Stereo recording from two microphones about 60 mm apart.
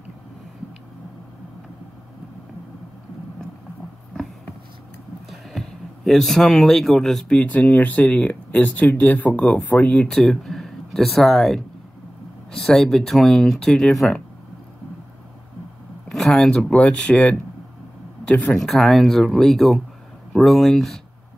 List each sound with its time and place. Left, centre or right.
5.3 s speech: centre
7.3 s speech: left
10.1 s speech: centre
16.1 s speech: centre
16.7 s speech: left
18.6 s speech: centre